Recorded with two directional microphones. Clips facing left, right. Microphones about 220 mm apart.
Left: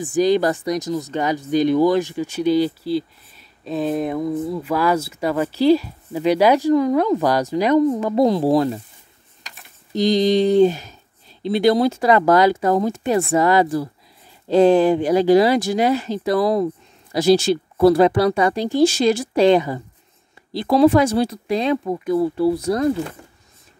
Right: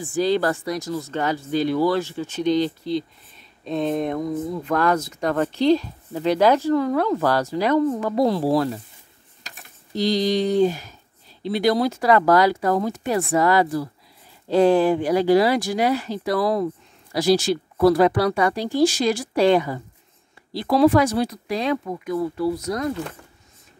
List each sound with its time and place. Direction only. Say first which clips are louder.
0.0 s speech: left 4 dB; 15° left (ahead or behind)
9.9 s speech: left 4 dB; 20° left (ahead or behind)